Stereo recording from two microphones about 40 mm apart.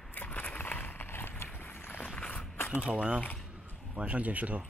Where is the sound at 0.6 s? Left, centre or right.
Left.